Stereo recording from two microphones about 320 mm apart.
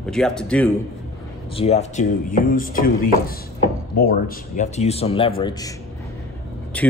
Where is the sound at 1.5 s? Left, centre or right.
Centre.